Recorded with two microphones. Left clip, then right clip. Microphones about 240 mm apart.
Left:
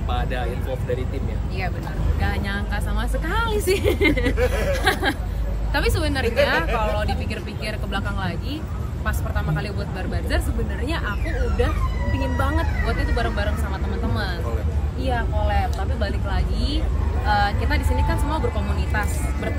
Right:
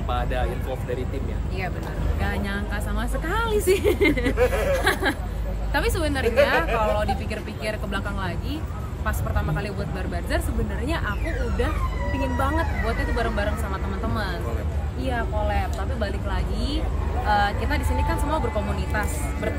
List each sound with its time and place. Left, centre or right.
0.1 s speech: centre
2.2 s speech: centre
4.4 s speech: right
4.7 s speech: centre
12.4 s speech: centre
15.0 s speech: centre